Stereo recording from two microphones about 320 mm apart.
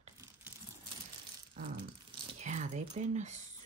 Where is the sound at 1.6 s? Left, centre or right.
Right.